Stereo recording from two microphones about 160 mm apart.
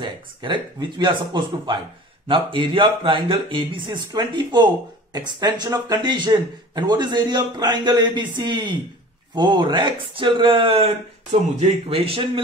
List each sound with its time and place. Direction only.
0.0 s speech: 30° right (ahead or behind)